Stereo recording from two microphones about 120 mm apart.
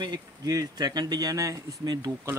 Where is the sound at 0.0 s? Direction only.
35° right (ahead or behind).